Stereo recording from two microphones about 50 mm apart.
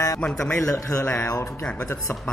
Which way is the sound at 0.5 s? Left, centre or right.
Left.